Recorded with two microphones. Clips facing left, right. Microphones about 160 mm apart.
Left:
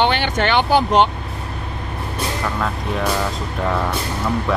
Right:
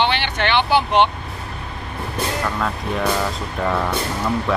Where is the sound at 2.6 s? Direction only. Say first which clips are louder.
Even; centre (ahead or behind).